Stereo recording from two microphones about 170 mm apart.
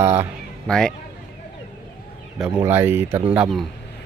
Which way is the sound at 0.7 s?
5° left (ahead or behind).